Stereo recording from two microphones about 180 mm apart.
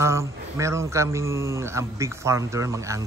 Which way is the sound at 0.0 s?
15° right (ahead or behind).